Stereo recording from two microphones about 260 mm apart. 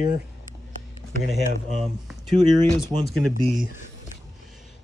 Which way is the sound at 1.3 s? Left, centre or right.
Centre.